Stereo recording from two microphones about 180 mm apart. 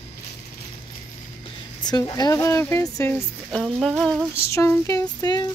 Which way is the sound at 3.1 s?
5° left (ahead or behind).